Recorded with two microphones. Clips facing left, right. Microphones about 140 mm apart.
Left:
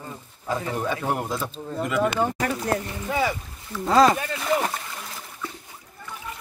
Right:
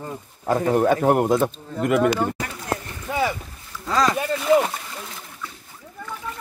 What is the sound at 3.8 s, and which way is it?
Speech, 30° left (ahead or behind).